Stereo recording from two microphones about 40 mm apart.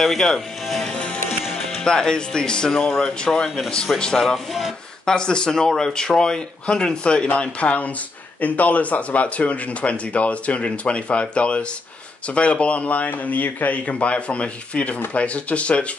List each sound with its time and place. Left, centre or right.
0.0 s speech: centre
0.9 s music: left
1.9 s speech: centre
5.0 s speech: left
7.3 s speech: left